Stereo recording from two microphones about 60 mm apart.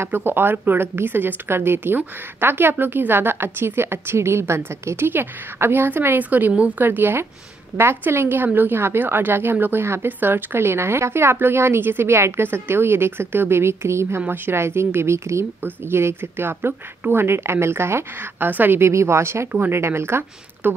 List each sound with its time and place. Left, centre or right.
0.1 s a woman's voice: right
6.8 s a woman's voice: right
14.2 s speech: right
18.4 s a woman's voice: right
18.8 s speech: right
19.5 s a woman's voice: right
19.8 s speech: right